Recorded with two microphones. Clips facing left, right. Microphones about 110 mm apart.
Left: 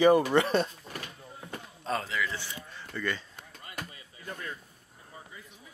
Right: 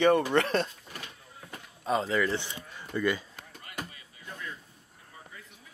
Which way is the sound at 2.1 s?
40° right (ahead or behind).